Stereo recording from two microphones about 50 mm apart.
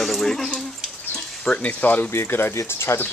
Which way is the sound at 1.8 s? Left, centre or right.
Left.